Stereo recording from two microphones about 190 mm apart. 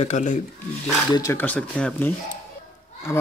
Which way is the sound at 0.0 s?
40° left (ahead or behind).